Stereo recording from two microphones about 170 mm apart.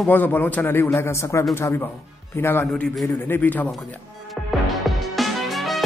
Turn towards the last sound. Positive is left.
turn(degrees=0)  # may be behind; listen again after turning